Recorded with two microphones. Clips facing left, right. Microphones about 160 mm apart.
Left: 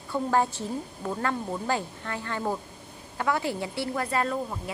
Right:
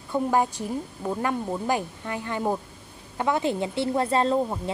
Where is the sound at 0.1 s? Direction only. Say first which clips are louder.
Right 2 dB; 15° right (ahead or behind).